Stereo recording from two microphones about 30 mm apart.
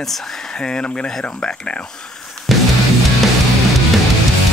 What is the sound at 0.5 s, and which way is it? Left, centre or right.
Speech, left.